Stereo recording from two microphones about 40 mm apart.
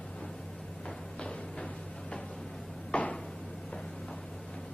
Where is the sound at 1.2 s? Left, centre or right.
Left.